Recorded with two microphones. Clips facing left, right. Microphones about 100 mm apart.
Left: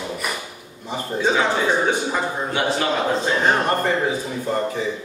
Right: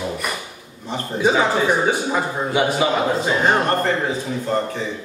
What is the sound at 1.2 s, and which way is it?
A man's voice, 10° right (ahead or behind).